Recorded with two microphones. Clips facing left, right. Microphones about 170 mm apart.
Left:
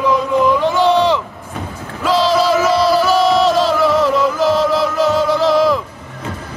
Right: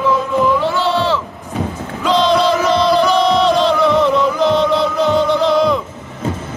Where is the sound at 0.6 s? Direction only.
15° left (ahead or behind).